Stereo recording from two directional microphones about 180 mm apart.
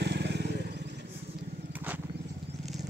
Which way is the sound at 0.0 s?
65° right (ahead or behind).